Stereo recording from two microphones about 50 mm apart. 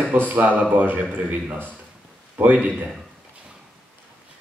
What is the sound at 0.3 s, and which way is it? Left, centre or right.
Speech, right.